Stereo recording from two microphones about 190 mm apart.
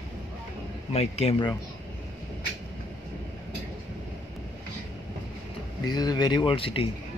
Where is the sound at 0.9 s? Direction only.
30° left (ahead or behind).